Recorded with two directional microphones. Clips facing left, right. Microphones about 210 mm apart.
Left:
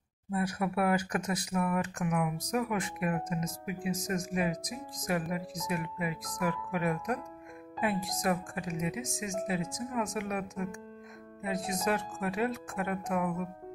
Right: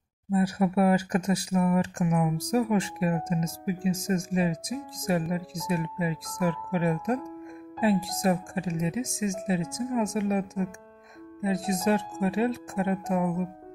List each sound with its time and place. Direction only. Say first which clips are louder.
0.3 s speech: right 7 dB; 25° right (ahead or behind)